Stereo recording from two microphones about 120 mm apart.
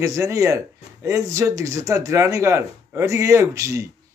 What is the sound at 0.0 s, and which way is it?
Speech, 25° right (ahead or behind).